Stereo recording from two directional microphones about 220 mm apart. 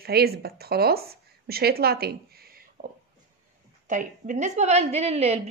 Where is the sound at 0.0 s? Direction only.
45° right (ahead or behind).